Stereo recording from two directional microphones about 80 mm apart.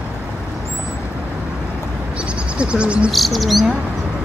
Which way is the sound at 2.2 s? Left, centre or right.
Centre.